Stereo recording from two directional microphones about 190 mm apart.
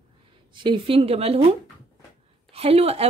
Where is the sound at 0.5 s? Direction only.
25° right (ahead or behind).